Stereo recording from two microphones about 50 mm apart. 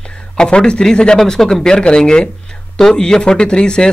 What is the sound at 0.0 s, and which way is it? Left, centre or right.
Speech, centre.